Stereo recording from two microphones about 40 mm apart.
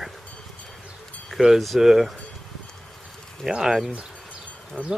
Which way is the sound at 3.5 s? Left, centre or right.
Centre.